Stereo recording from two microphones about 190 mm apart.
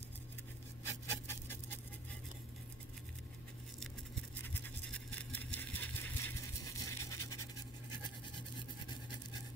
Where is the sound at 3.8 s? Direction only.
10° left (ahead or behind).